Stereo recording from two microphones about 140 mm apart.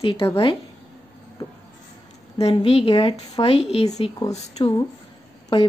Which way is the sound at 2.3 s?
45° left (ahead or behind).